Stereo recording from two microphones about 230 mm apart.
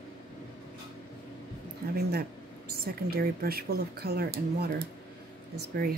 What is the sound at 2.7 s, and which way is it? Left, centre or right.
Speech, right.